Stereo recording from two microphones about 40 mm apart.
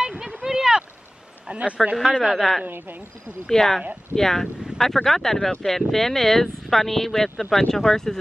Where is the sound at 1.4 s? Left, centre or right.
Right.